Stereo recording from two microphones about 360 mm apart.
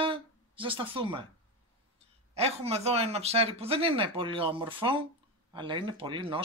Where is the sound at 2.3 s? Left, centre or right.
Centre.